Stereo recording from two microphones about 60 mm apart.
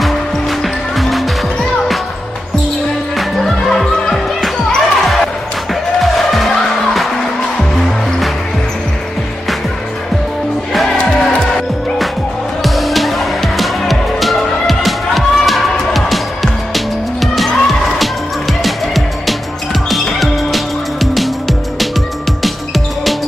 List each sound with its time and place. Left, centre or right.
0.0 s music: centre
3.2 s basketball bounce: centre
5.9 s music: centre
12.6 s music: centre